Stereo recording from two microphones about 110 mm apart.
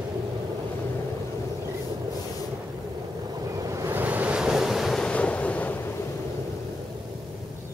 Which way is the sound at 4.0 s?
15° right (ahead or behind).